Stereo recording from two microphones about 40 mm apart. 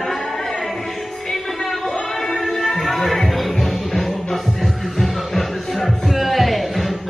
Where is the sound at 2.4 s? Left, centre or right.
Centre.